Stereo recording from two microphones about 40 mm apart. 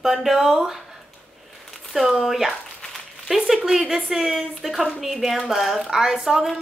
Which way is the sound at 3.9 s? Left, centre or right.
Centre.